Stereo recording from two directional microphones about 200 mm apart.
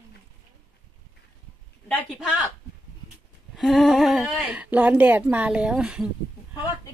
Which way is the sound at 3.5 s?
Centre (ahead or behind).